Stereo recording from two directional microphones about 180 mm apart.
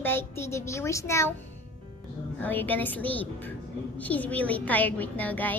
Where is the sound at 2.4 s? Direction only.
10° left (ahead or behind).